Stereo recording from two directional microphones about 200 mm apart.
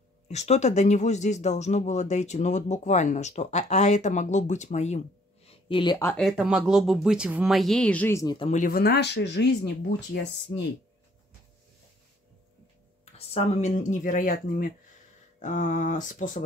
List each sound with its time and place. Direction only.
0.3 s speech: 35° left (ahead or behind)
6.0 s speech: centre (ahead or behind)
8.4 s speech: 35° left (ahead or behind); by 10.7 s 60° left (ahead or behind)
13.3 s speech: 35° left (ahead or behind)